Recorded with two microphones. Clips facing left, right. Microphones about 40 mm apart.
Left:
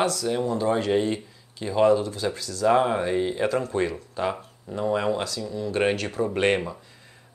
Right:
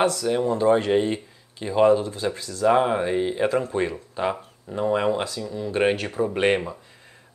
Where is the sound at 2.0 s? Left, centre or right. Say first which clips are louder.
Right 1 dB; right.